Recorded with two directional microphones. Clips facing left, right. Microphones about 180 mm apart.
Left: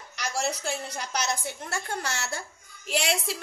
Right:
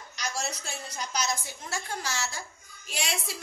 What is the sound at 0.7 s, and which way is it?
A woman's voice, 65° left (ahead or behind).